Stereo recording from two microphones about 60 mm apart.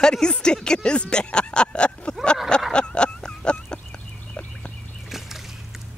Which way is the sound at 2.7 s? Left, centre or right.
Centre.